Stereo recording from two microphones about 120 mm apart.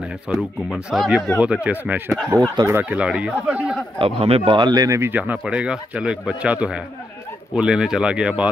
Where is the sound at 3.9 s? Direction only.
55° right (ahead or behind); by 5.0 s 35° right (ahead or behind).